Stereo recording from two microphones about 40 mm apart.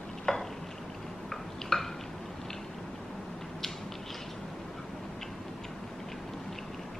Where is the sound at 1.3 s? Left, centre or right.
Centre.